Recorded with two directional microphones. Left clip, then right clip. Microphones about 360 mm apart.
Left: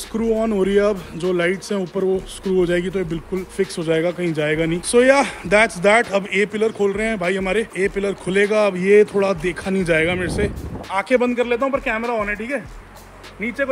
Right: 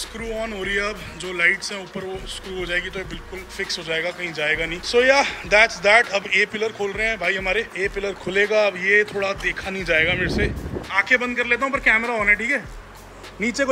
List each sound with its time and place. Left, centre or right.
0.1 s a man's voice: centre